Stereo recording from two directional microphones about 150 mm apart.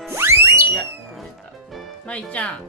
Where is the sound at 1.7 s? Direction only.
10° left (ahead or behind).